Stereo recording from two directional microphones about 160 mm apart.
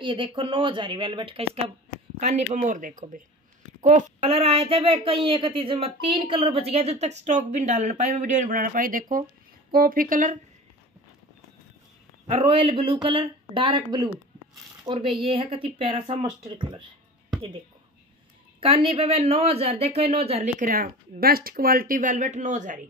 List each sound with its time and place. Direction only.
0.0 s speech: 30° right (ahead or behind); by 3.2 s 55° right (ahead or behind)
3.8 s speech: 45° right (ahead or behind)
12.3 s speech: 35° right (ahead or behind)
18.6 s speech: 35° right (ahead or behind)
20.6 s speech: 65° right (ahead or behind)